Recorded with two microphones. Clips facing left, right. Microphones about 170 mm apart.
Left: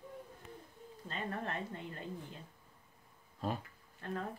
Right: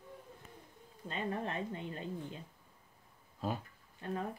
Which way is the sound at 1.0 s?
20° right (ahead or behind).